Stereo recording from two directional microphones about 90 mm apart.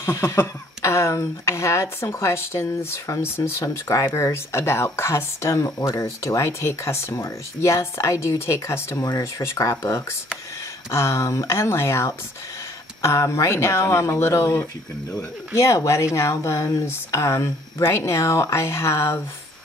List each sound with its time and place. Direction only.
0.0 s speech: 30° left (ahead or behind)